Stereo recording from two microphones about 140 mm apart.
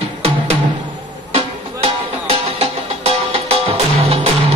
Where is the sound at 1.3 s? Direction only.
50° right (ahead or behind).